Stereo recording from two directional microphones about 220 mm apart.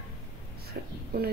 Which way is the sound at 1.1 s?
45° right (ahead or behind).